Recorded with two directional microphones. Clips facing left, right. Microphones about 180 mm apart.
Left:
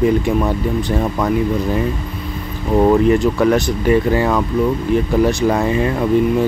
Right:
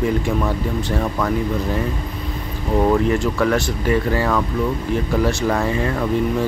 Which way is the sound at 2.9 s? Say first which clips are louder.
Left 5 dB; 20° left (ahead or behind).